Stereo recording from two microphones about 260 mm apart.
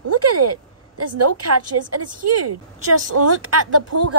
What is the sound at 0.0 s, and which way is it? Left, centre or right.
A woman's voice, right.